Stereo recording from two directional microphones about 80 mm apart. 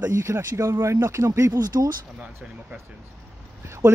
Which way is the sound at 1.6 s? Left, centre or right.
Right.